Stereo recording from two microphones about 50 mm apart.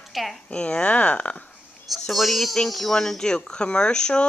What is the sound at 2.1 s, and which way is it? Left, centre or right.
Speech, centre.